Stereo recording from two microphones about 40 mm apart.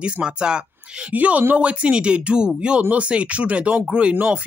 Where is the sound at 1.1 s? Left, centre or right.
Right.